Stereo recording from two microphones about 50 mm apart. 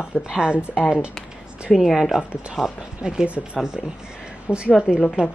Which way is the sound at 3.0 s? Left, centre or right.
Centre.